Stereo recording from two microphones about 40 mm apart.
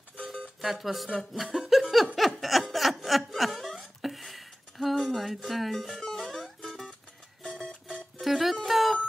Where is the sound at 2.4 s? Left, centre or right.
Centre.